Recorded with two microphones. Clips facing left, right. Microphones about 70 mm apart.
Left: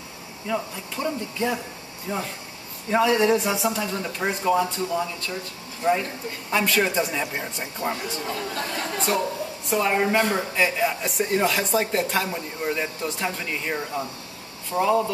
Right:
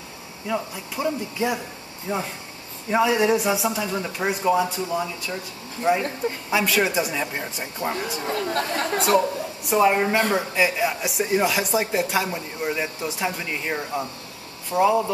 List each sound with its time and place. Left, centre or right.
0.5 s speech: centre
6.5 s a man's voice: centre
8.3 s speech: right
9.7 s speech: centre
9.9 s a man's voice: centre